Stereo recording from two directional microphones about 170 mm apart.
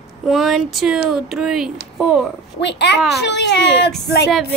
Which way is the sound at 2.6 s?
90° left.